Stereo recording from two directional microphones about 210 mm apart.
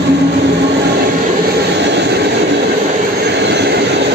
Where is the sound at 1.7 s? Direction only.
55° right (ahead or behind).